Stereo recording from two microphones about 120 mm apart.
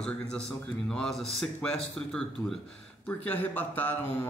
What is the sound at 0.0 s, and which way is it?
Mantra, 5° left (ahead or behind).